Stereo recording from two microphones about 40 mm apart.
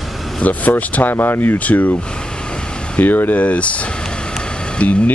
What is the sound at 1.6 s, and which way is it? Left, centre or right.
Speech, left.